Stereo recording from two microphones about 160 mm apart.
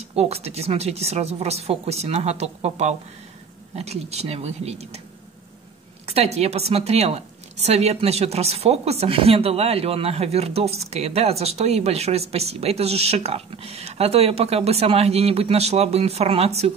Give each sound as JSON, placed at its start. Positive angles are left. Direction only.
{"t": 0.0, "sound": "speech", "side_deg": -40}
{"t": 6.0, "sound": "speech", "side_deg": -40}